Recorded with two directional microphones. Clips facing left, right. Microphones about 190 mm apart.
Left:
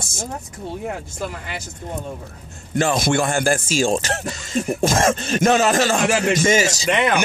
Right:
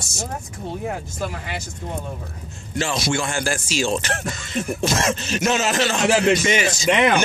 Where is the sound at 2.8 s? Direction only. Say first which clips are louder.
Left 4 dB; 50° left (ahead or behind).